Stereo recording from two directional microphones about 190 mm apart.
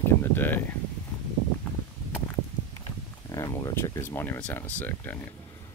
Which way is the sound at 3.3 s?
15° left (ahead or behind).